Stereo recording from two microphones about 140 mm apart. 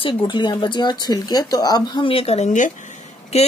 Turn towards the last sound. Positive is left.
turn(degrees=55)  # may be behind; listen again after turning